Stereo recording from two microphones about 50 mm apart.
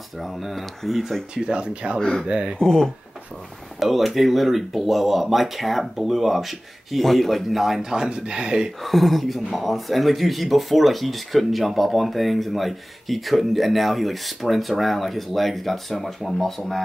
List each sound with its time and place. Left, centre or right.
0.2 s speech: centre
1.3 s speech: centre
2.0 s speech: centre
2.2 s speech: centre
2.6 s speech: centre
3.8 s speech: centre
8.8 s speech: centre